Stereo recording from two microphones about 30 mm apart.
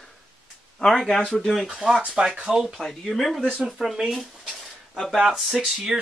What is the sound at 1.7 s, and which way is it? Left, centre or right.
Speech, centre.